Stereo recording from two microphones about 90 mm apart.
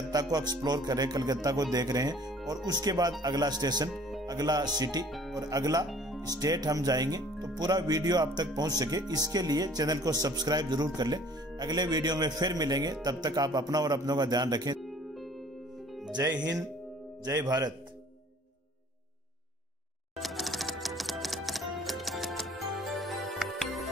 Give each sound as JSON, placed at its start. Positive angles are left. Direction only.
{"t": 0.1, "sound": "music", "side_deg": -45}
{"t": 3.9, "sound": "music", "side_deg": 0}
{"t": 4.3, "sound": "music", "side_deg": -45}
{"t": 5.0, "sound": "speech", "side_deg": 0}
{"t": 5.3, "sound": "music", "side_deg": -45}
{"t": 5.9, "sound": "music", "side_deg": 0}
{"t": 6.2, "sound": "music", "side_deg": -45}
{"t": 14.8, "sound": "music", "side_deg": 0}
{"t": 16.2, "sound": "speech", "side_deg": -35}
{"t": 17.2, "sound": "music", "side_deg": -45}
{"t": 20.2, "sound": "music", "side_deg": 0}